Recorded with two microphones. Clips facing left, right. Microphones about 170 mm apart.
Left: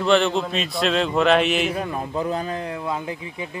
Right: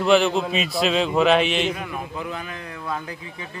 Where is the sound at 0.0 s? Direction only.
Centre (ahead or behind).